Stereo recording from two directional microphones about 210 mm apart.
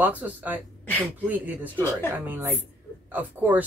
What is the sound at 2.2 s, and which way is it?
Speech, 10° right (ahead or behind).